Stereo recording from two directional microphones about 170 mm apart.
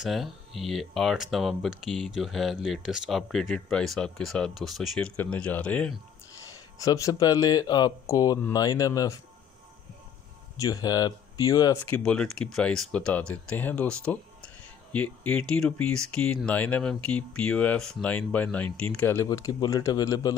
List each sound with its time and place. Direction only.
0.0 s speech: centre (ahead or behind)
6.8 s speech: 20° left (ahead or behind)
10.6 s speech: 20° left (ahead or behind)